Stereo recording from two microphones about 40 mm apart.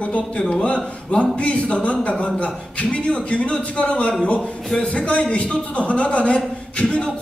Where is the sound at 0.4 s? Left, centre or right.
Left.